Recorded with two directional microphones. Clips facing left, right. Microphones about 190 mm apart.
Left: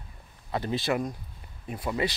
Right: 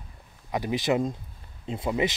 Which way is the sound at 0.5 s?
15° right (ahead or behind).